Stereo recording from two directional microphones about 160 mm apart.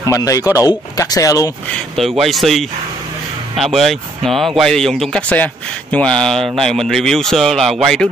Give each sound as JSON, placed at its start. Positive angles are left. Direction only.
{"t": 0.1, "sound": "speech", "side_deg": 20}
{"t": 2.0, "sound": "a man's voice", "side_deg": 0}